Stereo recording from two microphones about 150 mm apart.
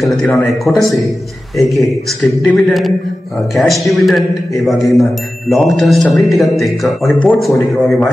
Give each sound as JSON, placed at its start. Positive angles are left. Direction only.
{"t": 0.7, "sound": "speech", "side_deg": -5}